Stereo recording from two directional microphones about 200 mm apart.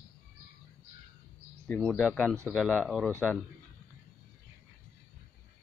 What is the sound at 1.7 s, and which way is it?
Speech, 5° left (ahead or behind).